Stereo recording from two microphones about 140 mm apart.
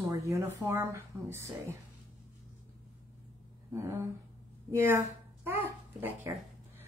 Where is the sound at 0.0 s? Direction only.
25° right (ahead or behind).